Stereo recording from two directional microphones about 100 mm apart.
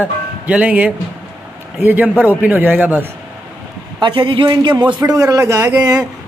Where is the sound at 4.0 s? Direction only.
55° right (ahead or behind).